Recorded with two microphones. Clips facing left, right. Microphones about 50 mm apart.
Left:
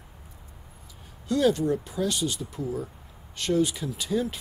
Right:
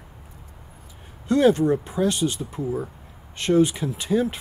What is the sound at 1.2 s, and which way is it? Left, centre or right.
Speech, right.